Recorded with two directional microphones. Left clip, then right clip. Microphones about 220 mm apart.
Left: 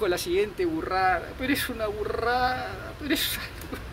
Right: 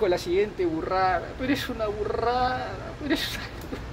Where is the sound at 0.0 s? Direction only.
10° left (ahead or behind).